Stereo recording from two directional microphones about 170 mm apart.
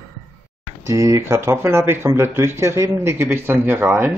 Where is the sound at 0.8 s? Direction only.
20° right (ahead or behind).